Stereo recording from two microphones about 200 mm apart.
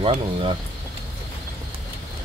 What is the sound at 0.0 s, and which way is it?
Speech, 25° right (ahead or behind).